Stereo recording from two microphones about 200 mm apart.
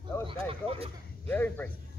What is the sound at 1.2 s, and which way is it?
Speech, 10° left (ahead or behind).